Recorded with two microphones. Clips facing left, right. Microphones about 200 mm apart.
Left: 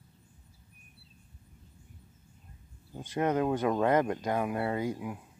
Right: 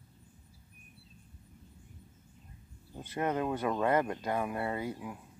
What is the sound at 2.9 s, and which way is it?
Speech, 15° left (ahead or behind).